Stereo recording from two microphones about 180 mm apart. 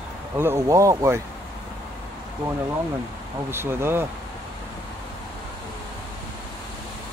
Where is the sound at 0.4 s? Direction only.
15° right (ahead or behind).